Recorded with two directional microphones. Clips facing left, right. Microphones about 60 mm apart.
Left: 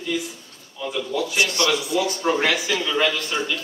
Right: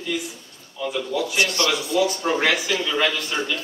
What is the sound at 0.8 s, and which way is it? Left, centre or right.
Speech, centre.